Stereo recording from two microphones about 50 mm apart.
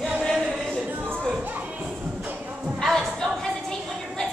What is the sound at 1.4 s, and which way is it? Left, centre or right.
Music, right.